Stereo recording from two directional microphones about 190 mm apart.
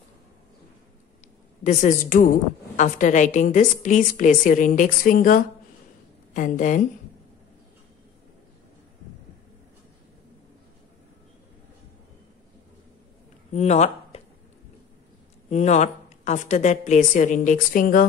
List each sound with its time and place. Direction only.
1.6 s a woman's voice: 40° left (ahead or behind)
13.5 s a sound: 35° left (ahead or behind)
15.5 s a woman's voice: 35° left (ahead or behind)